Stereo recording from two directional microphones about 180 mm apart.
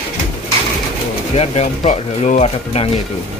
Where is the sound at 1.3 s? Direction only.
35° left (ahead or behind).